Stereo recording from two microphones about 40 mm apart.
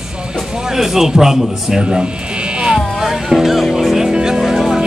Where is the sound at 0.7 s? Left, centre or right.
Centre.